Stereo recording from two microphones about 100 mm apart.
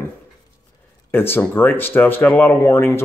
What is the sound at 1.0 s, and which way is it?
Speech, 20° left (ahead or behind).